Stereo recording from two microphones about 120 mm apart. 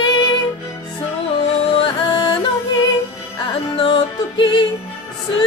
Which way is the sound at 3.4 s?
40° left (ahead or behind).